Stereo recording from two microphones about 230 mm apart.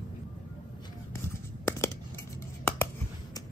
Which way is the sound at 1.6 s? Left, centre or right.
Centre.